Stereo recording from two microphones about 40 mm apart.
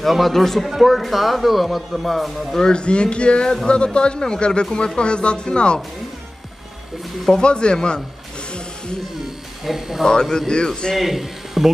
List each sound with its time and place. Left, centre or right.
0.0 s speech: centre
2.6 s speech: left
7.4 s speech: left
8.5 s a sound: left
9.2 s a sound: centre
10.5 s speech: left
11.0 s speech: centre